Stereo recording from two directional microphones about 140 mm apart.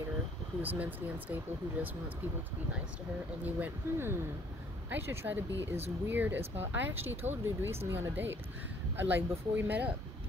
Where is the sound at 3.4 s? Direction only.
10° right (ahead or behind).